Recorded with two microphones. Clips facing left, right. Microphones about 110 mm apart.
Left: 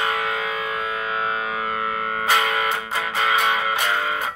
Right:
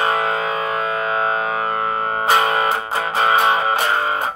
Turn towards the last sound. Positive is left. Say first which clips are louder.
# right 4 dB
turn(degrees=-40)  # may be behind; listen again after turning